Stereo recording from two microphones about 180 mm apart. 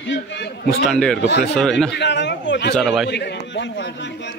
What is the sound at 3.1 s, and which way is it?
Speech, 75° left (ahead or behind).